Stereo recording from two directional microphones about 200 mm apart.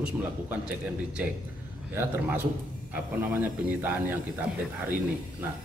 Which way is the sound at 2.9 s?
10° right (ahead or behind).